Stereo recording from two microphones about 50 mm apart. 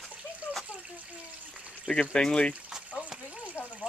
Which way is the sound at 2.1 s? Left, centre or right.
Centre.